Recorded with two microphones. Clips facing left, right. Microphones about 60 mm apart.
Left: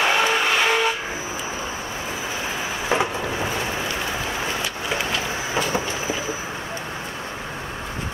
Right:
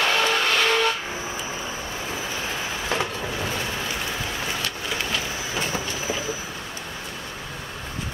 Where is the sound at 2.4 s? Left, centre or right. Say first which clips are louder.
Left 2 dB; centre.